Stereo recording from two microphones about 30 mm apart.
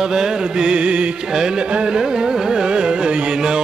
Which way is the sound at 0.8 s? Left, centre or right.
Right.